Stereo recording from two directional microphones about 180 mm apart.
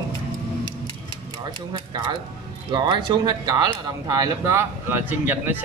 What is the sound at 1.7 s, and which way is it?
Speech, 25° right (ahead or behind).